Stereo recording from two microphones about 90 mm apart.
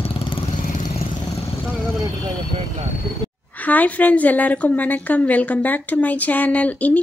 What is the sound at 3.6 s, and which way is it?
A woman's voice, 15° left (ahead or behind).